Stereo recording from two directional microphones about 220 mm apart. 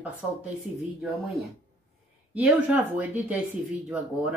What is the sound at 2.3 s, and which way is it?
Speech, 5° right (ahead or behind).